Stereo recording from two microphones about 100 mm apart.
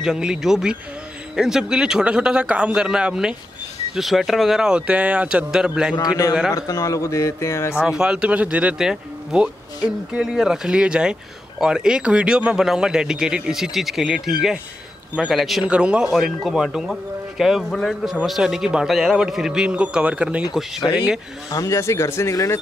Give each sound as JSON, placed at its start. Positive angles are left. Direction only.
{"t": 0.0, "sound": "speech", "side_deg": -5}
{"t": 6.5, "sound": "speech", "side_deg": 30}
{"t": 7.7, "sound": "a man's voice", "side_deg": -5}
{"t": 21.5, "sound": "speech", "side_deg": 35}